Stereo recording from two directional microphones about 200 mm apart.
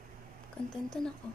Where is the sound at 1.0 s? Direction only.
5° left (ahead or behind).